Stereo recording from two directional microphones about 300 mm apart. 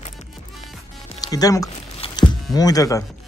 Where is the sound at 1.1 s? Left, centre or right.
Centre.